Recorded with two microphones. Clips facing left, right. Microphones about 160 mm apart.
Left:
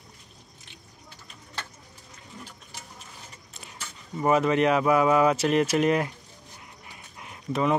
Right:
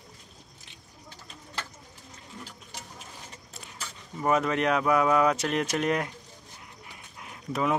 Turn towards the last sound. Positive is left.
turn(degrees=0)  # may be behind; listen again after turning